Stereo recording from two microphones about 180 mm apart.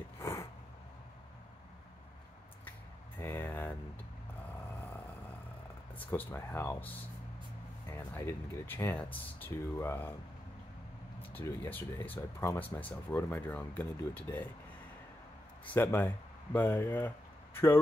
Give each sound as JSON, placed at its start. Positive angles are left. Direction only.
{"t": 0.2, "sound": "a sound", "side_deg": 15}
{"t": 3.2, "sound": "a sound", "side_deg": 15}
{"t": 5.9, "sound": "speech", "side_deg": 10}
{"t": 7.9, "sound": "speech", "side_deg": 15}
{"t": 11.1, "sound": "speech", "side_deg": 15}
{"t": 15.6, "sound": "speech", "side_deg": 10}